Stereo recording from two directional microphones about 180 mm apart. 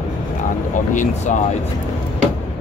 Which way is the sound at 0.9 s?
45° left (ahead or behind).